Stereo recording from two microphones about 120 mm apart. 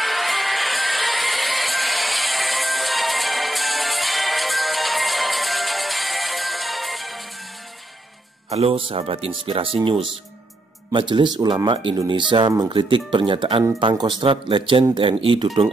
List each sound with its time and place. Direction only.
0.0 s music: centre (ahead or behind)
8.5 s speech: 55° right (ahead or behind)